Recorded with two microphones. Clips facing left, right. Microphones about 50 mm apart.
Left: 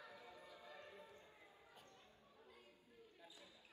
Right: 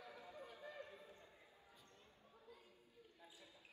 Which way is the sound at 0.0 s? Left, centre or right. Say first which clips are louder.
Right 3 dB; right.